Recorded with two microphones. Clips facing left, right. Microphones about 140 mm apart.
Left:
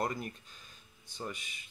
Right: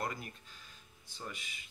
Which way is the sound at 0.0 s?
35° left (ahead or behind).